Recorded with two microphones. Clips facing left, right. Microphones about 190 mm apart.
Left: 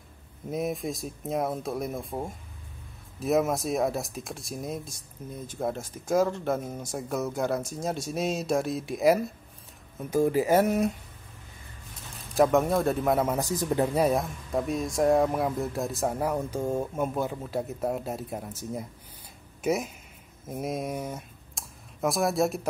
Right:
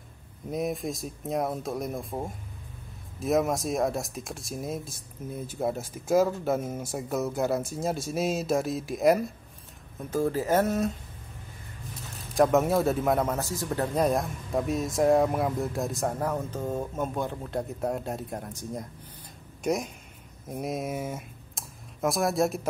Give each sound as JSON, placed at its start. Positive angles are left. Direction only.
{"t": 0.5, "sound": "speech", "side_deg": 0}
{"t": 10.1, "sound": "speech", "side_deg": 15}
{"t": 12.4, "sound": "speech", "side_deg": 0}
{"t": 13.4, "sound": "speech", "side_deg": 15}
{"t": 14.0, "sound": "speech", "side_deg": 0}